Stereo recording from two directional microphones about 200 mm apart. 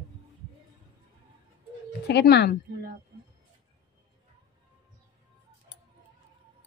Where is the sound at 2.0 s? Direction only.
55° left (ahead or behind).